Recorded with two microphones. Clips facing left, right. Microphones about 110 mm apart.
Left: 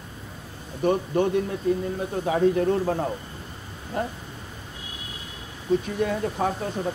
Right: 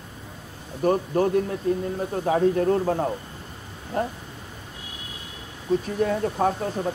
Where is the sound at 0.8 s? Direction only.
40° right (ahead or behind).